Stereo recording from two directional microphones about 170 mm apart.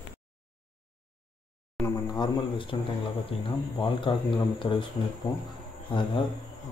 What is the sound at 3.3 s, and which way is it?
Speech, 35° left (ahead or behind).